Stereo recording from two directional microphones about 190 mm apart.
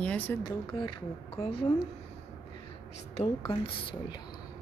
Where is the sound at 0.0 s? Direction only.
10° left (ahead or behind).